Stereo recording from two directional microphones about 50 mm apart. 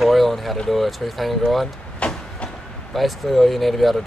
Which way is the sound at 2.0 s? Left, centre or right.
Left.